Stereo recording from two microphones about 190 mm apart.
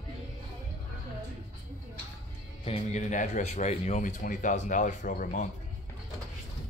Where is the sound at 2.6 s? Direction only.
35° left (ahead or behind).